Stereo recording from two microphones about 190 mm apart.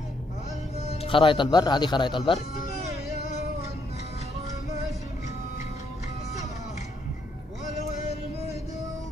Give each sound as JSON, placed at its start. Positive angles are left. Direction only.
{"t": 0.8, "sound": "speech", "side_deg": 30}